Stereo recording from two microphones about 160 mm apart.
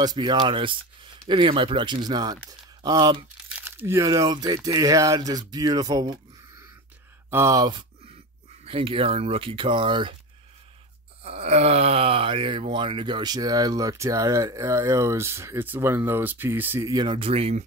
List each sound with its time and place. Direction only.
0.0 s speech: 25° right (ahead or behind)
3.4 s speech: 10° right (ahead or behind)
7.2 s speech: 15° right (ahead or behind)
8.6 s speech: 35° right (ahead or behind)
11.2 s speech: 40° right (ahead or behind); by 16.9 s 15° right (ahead or behind)
16.9 s speech: 30° right (ahead or behind)